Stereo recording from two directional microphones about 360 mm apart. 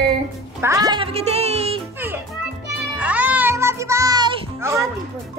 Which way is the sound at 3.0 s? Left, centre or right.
Centre.